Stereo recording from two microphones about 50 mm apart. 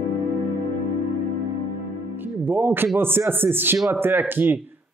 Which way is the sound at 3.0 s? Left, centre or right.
Right.